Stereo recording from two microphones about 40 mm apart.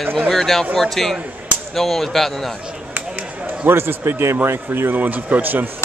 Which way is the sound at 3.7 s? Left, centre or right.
Right.